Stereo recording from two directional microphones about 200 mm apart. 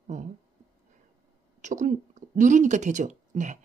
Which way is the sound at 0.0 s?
35° right (ahead or behind).